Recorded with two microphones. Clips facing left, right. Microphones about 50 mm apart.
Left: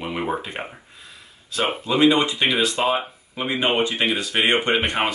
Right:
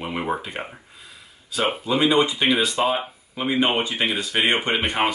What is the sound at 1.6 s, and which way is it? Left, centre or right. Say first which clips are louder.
Speech: right 1 dB; centre.